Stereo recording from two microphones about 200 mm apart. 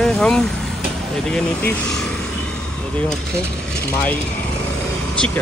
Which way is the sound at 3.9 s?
10° left (ahead or behind).